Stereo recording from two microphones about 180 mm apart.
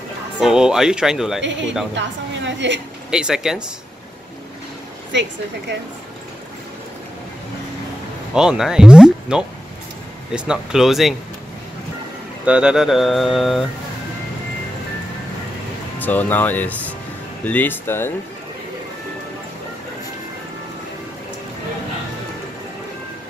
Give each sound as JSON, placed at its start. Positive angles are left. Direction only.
{"t": 0.4, "sound": "mantra", "side_deg": -5}
{"t": 2.0, "sound": "a woman's voice", "side_deg": -85}
{"t": 3.1, "sound": "mantra", "side_deg": -5}
{"t": 5.1, "sound": "speech", "side_deg": -80}
{"t": 8.4, "sound": "speech", "side_deg": -5}
{"t": 10.3, "sound": "mantra", "side_deg": -5}
{"t": 12.4, "sound": "mantra", "side_deg": -5}
{"t": 16.0, "sound": "speech", "side_deg": 10}